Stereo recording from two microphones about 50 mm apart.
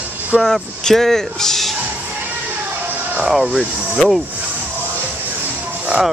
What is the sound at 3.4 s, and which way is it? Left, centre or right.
Speech, centre.